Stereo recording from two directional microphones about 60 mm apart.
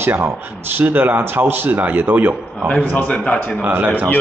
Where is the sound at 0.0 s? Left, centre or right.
Right.